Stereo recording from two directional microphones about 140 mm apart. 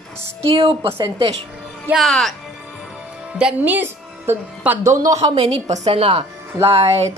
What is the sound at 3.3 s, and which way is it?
A woman's voice, 10° right (ahead or behind).